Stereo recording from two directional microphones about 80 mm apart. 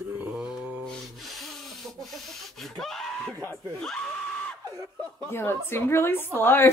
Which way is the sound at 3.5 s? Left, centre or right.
Centre.